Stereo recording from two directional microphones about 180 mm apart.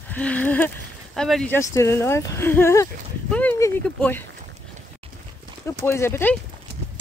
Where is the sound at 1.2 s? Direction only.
Centre (ahead or behind).